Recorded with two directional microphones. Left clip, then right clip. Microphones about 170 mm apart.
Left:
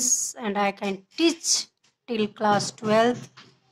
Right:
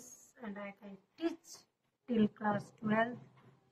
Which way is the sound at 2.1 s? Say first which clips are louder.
Left 12 dB; 20° left (ahead or behind).